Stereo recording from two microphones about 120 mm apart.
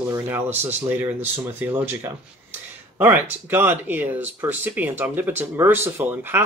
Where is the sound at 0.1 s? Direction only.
20° right (ahead or behind).